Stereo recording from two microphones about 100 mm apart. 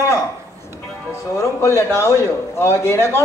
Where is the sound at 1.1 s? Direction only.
30° left (ahead or behind).